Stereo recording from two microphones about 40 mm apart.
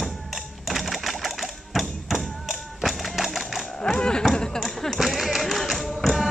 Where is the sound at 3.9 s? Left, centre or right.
Left.